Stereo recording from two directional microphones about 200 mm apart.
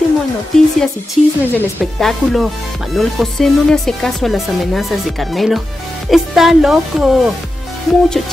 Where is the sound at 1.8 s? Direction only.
Centre (ahead or behind).